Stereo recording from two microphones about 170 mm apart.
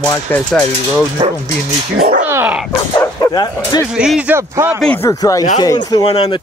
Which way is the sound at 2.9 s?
20° left (ahead or behind).